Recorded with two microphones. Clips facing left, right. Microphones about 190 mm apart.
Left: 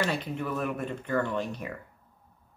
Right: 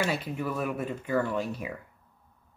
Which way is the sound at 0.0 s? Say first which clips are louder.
Even; 5° right (ahead or behind).